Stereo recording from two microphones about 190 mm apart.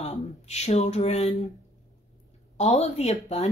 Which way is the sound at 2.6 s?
35° left (ahead or behind).